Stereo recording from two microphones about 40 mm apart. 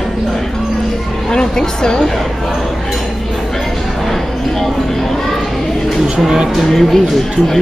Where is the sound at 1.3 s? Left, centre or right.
Centre.